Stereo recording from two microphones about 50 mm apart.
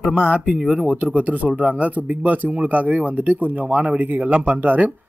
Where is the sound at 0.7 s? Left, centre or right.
Right.